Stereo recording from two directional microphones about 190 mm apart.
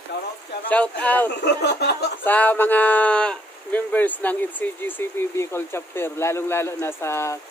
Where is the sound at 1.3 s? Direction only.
60° left (ahead or behind).